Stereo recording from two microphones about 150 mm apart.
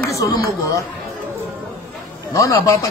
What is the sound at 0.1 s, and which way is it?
Speech, 20° left (ahead or behind).